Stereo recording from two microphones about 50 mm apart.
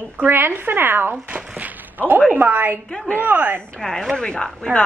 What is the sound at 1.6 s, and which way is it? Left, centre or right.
A woman's voice, right.